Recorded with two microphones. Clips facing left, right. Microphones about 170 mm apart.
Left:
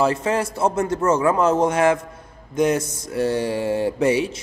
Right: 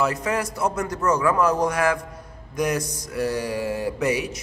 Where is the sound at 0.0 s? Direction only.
25° left (ahead or behind).